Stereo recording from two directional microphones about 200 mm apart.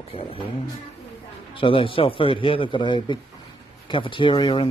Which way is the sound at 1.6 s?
25° left (ahead or behind).